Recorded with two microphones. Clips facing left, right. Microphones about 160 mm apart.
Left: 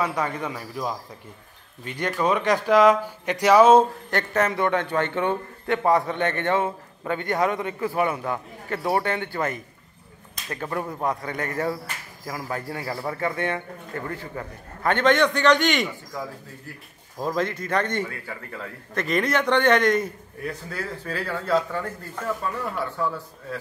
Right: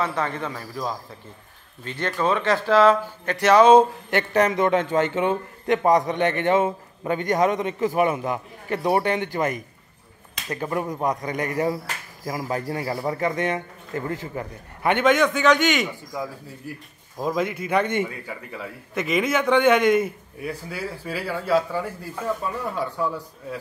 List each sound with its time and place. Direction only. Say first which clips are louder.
0.0 s speech: even; 10° left (ahead or behind)
4.1 s a man's voice: right 3 dB; 10° right (ahead or behind)
16.1 s a man's voice: right 2 dB; 15° right (ahead or behind)